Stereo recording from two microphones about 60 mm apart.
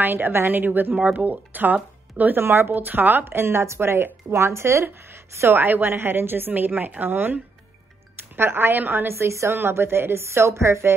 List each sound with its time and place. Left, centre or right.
0.0 s a woman's voice: right
8.4 s a woman's voice: right
9.1 s speech: right